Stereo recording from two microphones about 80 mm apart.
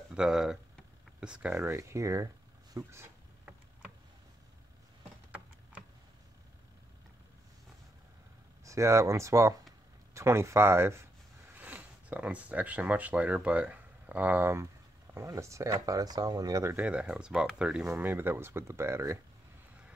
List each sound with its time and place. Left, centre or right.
0.1 s speech: centre
1.7 s speech: right
8.6 s speech: right
11.5 s speech: right
15.1 s speech: right
15.8 s speech: right
16.7 s speech: centre
17.8 s speech: right